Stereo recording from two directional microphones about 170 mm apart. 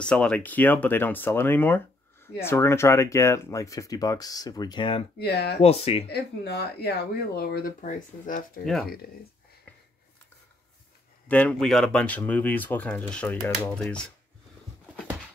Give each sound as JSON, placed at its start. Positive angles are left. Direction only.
{"t": 0.0, "sound": "speech", "side_deg": 5}
{"t": 5.2, "sound": "speech", "side_deg": 70}
{"t": 5.6, "sound": "speech", "side_deg": 35}
{"t": 6.0, "sound": "speech", "side_deg": 75}
{"t": 8.6, "sound": "speech", "side_deg": 0}
{"t": 11.2, "sound": "speech", "side_deg": 10}